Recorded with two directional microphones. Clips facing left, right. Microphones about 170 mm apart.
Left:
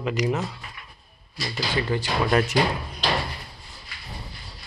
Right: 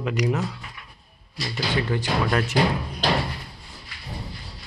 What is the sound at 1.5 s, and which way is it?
Speech, 10° left (ahead or behind).